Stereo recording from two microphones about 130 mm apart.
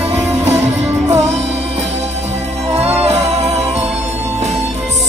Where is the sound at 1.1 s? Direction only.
60° right (ahead or behind).